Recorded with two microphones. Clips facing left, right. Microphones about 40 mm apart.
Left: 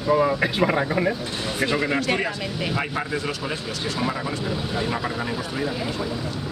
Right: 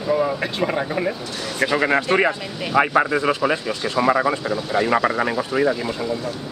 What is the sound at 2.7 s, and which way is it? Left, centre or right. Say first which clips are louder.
Speech: right 14 dB; right.